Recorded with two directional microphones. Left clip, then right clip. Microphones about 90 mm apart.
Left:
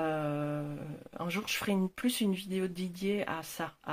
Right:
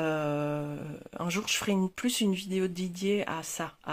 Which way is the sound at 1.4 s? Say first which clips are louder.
Right 4 dB; 30° right (ahead or behind).